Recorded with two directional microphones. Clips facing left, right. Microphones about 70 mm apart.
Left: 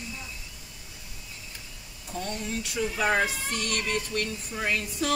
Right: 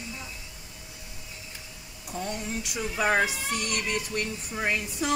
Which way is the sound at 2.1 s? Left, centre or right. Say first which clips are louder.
Even; centre.